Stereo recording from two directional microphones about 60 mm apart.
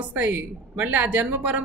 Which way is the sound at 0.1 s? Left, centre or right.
Right.